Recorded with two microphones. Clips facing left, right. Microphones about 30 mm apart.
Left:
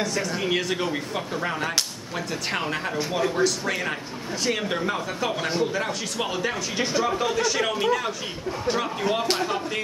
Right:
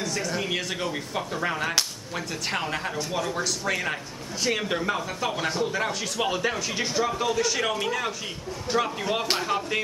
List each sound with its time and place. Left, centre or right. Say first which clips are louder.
0.0 s speech: left 2 dB; centre
3.0 s speech: left 8 dB; centre
3.4 s speech: left 2 dB; centre